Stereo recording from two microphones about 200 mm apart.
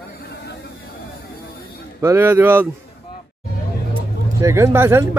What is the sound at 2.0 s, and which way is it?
Speech, 10° right (ahead or behind).